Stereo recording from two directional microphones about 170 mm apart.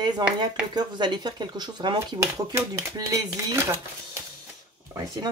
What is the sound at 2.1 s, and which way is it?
Speech, 15° right (ahead or behind).